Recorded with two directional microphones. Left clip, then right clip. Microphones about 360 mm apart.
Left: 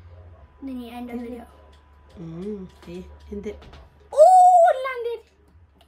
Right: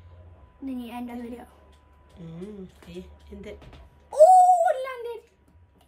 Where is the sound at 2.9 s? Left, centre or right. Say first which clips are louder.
Left 6 dB; left.